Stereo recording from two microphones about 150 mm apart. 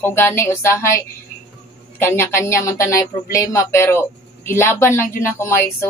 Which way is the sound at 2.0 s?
15° left (ahead or behind).